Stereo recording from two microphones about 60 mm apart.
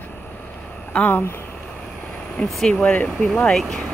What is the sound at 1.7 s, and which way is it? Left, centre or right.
Vehicle, centre.